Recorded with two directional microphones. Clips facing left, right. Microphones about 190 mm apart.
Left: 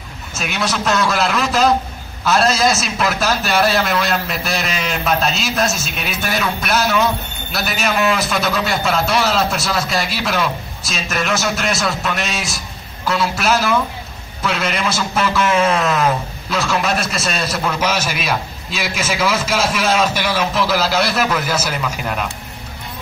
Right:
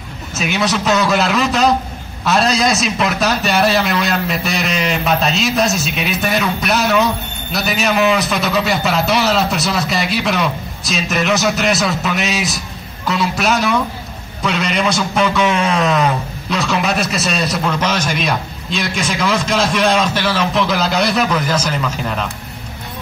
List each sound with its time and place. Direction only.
0.3 s a man's voice: centre (ahead or behind)